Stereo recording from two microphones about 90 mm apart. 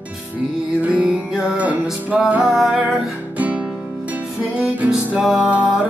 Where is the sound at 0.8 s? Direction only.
15° right (ahead or behind).